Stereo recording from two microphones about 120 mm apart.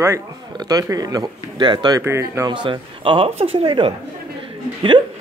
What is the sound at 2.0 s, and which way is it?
Speech, 25° right (ahead or behind).